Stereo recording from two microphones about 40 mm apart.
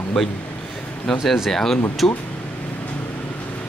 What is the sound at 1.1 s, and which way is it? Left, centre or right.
Speech, centre.